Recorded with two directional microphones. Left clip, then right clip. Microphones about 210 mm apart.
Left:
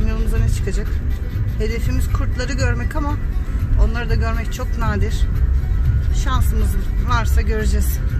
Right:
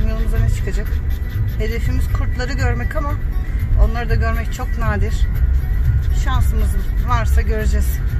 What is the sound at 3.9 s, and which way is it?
Speech, 20° left (ahead or behind).